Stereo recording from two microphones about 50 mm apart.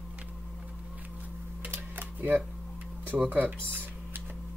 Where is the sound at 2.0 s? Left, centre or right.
Right.